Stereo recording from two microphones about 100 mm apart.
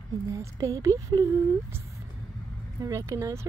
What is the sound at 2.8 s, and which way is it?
Speech, 35° right (ahead or behind).